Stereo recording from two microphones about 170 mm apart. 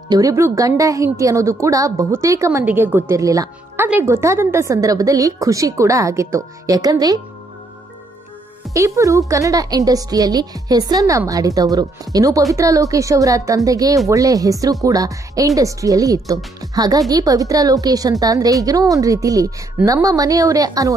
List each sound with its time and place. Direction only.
0.1 s a woman's voice: 20° right (ahead or behind)
8.7 s a woman's voice: 20° right (ahead or behind)